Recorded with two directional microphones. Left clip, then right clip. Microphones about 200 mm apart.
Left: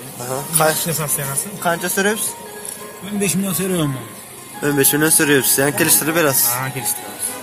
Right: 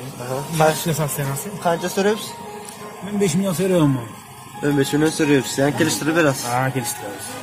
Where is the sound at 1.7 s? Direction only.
15° right (ahead or behind).